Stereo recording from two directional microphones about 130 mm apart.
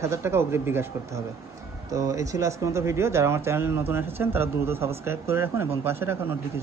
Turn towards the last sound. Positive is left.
turn(degrees=-20)  # may be behind; listen again after turning